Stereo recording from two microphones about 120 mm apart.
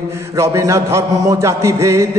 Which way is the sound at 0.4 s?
25° right (ahead or behind).